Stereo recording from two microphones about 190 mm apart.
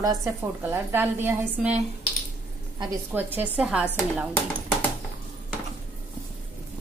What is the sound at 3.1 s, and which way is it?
Speech, 10° right (ahead or behind).